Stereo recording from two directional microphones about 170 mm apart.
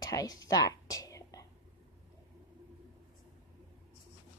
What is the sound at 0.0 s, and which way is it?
Whispering, 20° left (ahead or behind).